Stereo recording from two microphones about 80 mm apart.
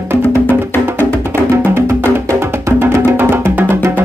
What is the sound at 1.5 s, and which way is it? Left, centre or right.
Music, right.